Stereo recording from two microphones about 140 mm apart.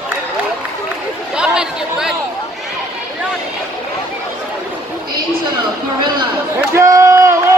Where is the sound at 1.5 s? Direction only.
5° right (ahead or behind).